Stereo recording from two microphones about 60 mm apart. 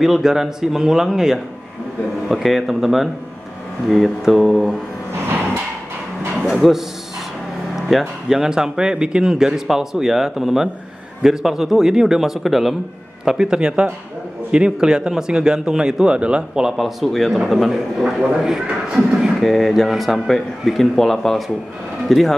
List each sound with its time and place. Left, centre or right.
0.0 s a man's voice: centre
6.4 s a man's voice: centre
7.9 s a man's voice: centre
19.4 s a man's voice: centre